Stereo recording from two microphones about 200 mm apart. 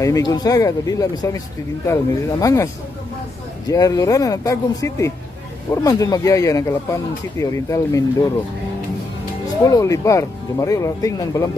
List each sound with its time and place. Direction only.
0.0 s speech: 15° left (ahead or behind)
9.7 s speech: 15° left (ahead or behind)